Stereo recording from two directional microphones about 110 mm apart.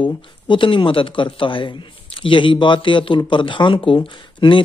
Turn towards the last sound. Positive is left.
turn(degrees=50)  # may be behind; listen again after turning